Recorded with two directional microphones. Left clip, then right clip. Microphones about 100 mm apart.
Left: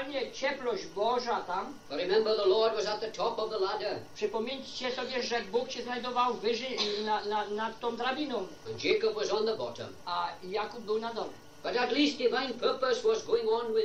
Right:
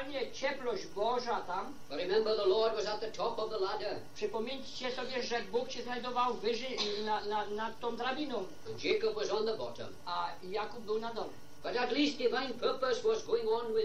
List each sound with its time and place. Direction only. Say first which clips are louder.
0.2 s a man's voice: left 3 dB; 25° right (ahead or behind)
1.9 s speech: left 4 dB; 50° right (ahead or behind)
2.1 s speech: left 3 dB; 20° right (ahead or behind)
2.8 s a man's voice: left 4 dB; 30° right (ahead or behind)
4.2 s a woman's voice: left 4 dB; 20° right (ahead or behind)
4.8 s a man's voice: left 4 dB; 30° right (ahead or behind)
6.0 s a woman's voice: left 3 dB; 25° right (ahead or behind)
6.7 s a man's voice: left 4 dB; 40° right (ahead or behind)
7.9 s speech: left 3 dB; 20° right (ahead or behind)
8.8 s a man's voice: left 4 dB; 35° right (ahead or behind)
10.1 s speech: left 4 dB; 25° right (ahead or behind)
10.5 s speech: left 4 dB; 35° right (ahead or behind)
12.4 s a man's voice: left 4 dB; 35° right (ahead or behind)
13.3 s speech: left 4 dB; 45° right (ahead or behind)